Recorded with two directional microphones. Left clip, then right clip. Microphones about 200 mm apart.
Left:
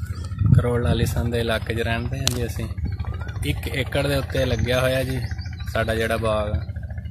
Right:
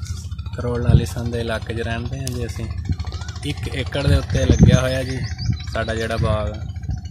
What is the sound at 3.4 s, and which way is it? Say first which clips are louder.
Speech: left 1 dB; centre (ahead or behind).